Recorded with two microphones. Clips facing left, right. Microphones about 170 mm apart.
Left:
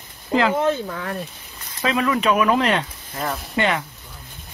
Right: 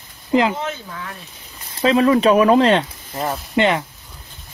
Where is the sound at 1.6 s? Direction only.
30° right (ahead or behind).